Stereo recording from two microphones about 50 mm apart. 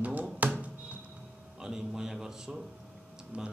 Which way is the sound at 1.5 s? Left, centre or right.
Centre.